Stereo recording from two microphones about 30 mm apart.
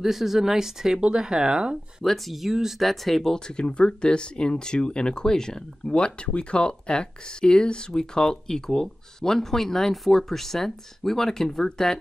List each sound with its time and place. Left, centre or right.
0.0 s speech: centre
1.0 s speech: right
2.2 s speech: centre
3.3 s speech: left
5.9 s speech: left; by 12.0 s centre